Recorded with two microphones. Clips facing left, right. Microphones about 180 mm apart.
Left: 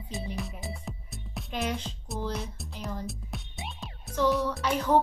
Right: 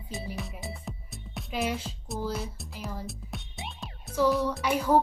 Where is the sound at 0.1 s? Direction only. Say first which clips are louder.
Left 1 dB; centre (ahead or behind).